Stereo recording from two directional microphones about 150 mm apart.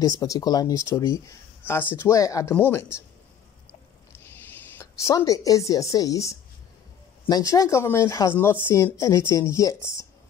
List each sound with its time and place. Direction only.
0.0 s speech: 25° left (ahead or behind)
4.7 s speech: 20° left (ahead or behind)